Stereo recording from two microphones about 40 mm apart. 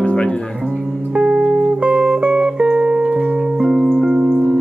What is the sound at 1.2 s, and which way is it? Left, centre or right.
Music, right.